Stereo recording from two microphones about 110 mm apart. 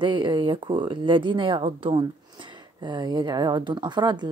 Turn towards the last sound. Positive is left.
turn(degrees=-45)  # may be behind; listen again after turning